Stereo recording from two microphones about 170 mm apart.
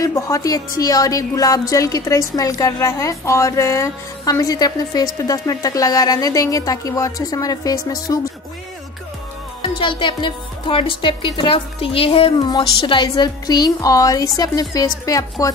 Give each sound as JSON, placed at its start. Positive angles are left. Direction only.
{"t": 0.0, "sound": "speech", "side_deg": 20}
{"t": 9.6, "sound": "speech", "side_deg": 30}